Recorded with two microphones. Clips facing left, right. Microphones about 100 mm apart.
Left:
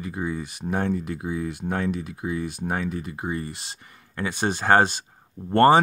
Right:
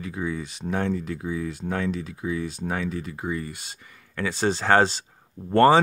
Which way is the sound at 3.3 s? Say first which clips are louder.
Even; 25° left (ahead or behind).